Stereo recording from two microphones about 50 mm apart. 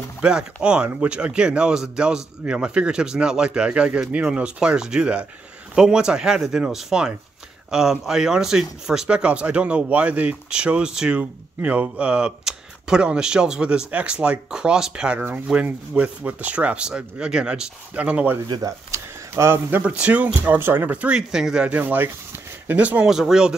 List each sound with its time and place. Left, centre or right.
0.2 s speech: centre
11.1 s speech: right
15.1 s speech: right
18.6 s speech: right
19.8 s speech: right
20.5 s speech: right
21.1 s speech: centre
21.6 s speech: right
23.0 s speech: centre